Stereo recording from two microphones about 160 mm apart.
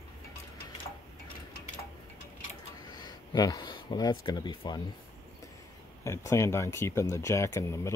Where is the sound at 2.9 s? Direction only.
25° left (ahead or behind).